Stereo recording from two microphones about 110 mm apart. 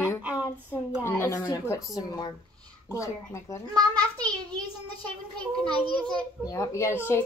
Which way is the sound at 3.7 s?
35° right (ahead or behind).